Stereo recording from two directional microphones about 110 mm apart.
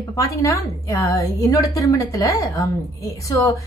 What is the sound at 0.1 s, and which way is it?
A woman's voice, 30° left (ahead or behind).